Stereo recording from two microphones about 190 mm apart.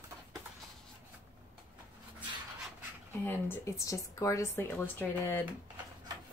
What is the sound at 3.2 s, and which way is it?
Speech, 10° left (ahead or behind).